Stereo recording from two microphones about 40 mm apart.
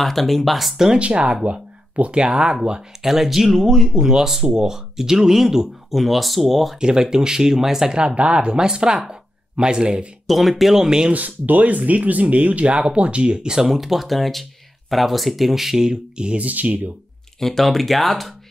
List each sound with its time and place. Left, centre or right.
0.0 s speech: centre
0.9 s speech: right
3.1 s speech: centre
3.9 s speech: centre
6.8 s speech: centre
7.9 s speech: right
10.2 s speech: centre
11.1 s speech: right
13.6 s speech: centre
15.9 s speech: right
16.3 s speech: right
17.4 s speech: centre